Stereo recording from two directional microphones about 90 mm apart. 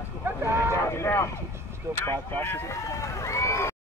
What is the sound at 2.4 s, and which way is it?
Speech, 30° left (ahead or behind).